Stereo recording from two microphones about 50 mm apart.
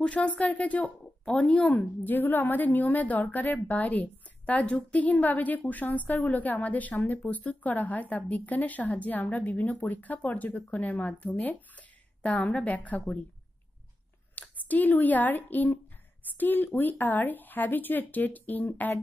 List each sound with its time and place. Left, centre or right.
0.0 s speech: left
1.2 s speech: centre
2.0 s a woman's voice: left
14.4 s a sound: left
14.7 s a woman's voice: left